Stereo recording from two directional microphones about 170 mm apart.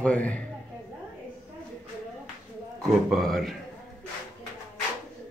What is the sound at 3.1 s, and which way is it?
Speech, centre (ahead or behind).